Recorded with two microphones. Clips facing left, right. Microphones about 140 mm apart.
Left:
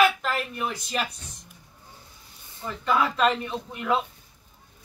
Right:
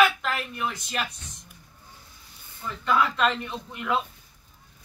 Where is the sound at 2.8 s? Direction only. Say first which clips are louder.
Left 1 dB; 5° left (ahead or behind).